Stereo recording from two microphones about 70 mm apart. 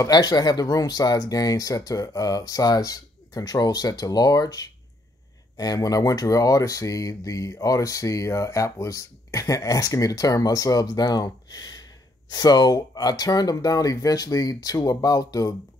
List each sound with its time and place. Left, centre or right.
0.1 s speech: left
12.3 s speech: left